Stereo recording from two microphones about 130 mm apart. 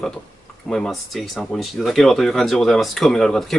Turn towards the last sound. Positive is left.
turn(degrees=5)  # may be behind; listen again after turning